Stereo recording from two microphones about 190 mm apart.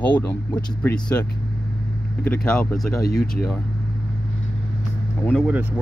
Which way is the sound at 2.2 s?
5° left (ahead or behind).